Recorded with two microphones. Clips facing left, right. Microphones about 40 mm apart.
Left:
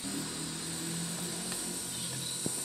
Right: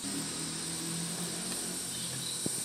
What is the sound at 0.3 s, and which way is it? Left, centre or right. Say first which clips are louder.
Vehicle: even; left.